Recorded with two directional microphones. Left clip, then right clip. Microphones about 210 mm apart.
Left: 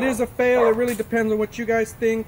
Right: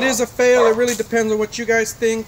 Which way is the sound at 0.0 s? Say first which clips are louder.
Right 4 dB; 15° right (ahead or behind).